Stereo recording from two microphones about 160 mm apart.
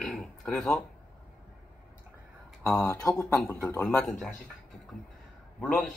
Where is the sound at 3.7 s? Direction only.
5° left (ahead or behind).